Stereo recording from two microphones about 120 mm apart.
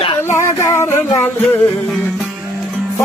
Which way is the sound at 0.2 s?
20° left (ahead or behind).